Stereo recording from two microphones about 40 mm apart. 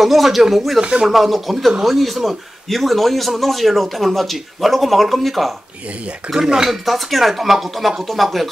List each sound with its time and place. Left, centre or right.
0.0 s a man's voice: centre
0.7 s speech: right
1.0 s a man's voice: centre
6.3 s a man's voice: centre